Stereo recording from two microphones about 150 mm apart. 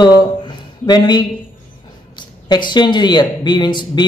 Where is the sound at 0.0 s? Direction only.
30° left (ahead or behind).